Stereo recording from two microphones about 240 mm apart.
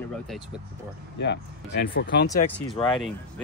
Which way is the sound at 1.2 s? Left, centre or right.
Left.